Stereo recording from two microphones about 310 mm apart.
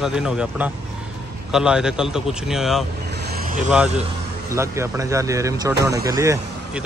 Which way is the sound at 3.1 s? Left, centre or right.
Right.